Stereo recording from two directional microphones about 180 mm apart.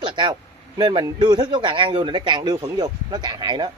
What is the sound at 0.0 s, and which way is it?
Speech, 25° right (ahead or behind).